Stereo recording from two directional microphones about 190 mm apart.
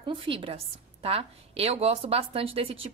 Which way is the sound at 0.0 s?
25° right (ahead or behind).